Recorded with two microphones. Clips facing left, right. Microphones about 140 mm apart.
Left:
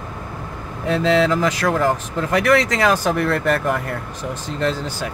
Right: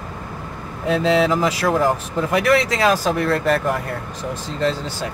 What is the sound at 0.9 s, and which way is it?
Speech, 5° right (ahead or behind).